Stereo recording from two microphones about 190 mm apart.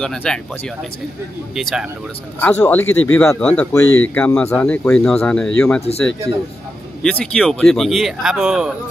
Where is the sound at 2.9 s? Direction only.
90° left.